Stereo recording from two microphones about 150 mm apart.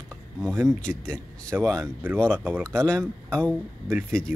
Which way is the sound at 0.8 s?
5° left (ahead or behind).